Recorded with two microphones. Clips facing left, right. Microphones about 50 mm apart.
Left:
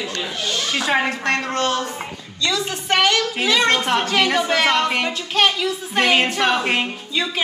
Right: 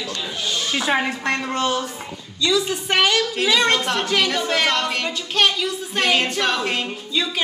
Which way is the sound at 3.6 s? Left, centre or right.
Centre.